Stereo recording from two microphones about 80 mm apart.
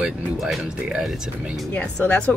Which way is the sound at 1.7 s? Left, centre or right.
Centre.